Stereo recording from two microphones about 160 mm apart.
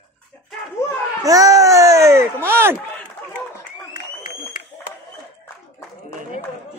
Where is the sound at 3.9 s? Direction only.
55° left (ahead or behind).